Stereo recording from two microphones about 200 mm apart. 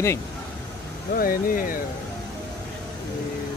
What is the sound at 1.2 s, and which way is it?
Speech, 45° left (ahead or behind).